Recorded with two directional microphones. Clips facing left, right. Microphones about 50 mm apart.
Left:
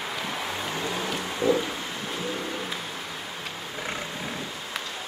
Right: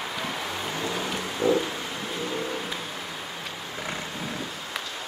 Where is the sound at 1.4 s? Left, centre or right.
Centre.